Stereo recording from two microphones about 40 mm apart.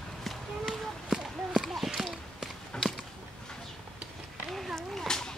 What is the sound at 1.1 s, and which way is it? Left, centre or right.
Clip-clop, centre.